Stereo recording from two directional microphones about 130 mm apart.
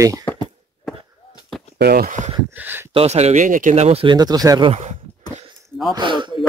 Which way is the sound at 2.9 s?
55° right (ahead or behind).